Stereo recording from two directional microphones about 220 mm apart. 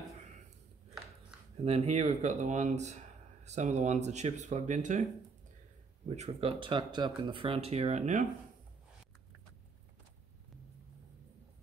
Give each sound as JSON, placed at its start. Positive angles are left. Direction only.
{"t": 1.6, "sound": "speech", "side_deg": -30}
{"t": 6.0, "sound": "speech", "side_deg": -30}